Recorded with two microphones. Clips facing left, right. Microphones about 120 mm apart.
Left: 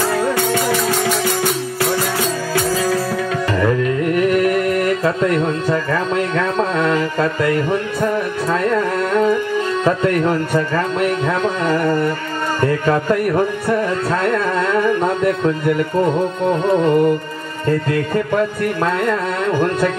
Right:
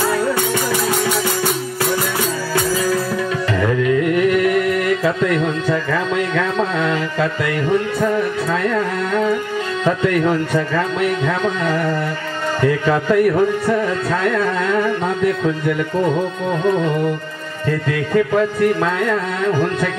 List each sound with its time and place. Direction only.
4.1 s music: 40° left (ahead or behind)
9.8 s speech: 40° left (ahead or behind)
15.2 s speech: 45° left (ahead or behind)
17.6 s speech: 45° left (ahead or behind)